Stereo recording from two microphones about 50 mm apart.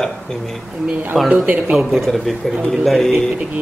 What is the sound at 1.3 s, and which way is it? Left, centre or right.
Speech, right.